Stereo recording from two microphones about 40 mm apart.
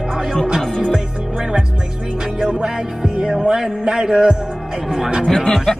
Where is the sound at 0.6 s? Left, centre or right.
Centre.